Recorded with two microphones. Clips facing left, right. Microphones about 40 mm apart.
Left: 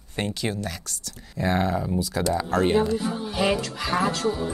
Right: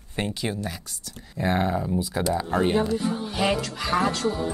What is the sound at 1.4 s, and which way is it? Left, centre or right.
Speech, centre.